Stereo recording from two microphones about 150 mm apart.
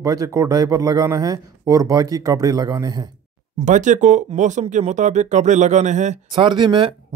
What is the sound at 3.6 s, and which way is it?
Speech, 55° right (ahead or behind).